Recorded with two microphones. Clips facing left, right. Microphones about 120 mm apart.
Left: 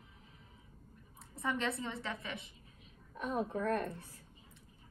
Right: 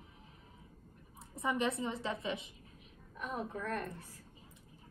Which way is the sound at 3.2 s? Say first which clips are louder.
Left 4 dB; 30° left (ahead or behind).